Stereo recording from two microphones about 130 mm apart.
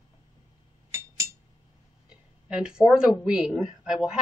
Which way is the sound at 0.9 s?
20° right (ahead or behind).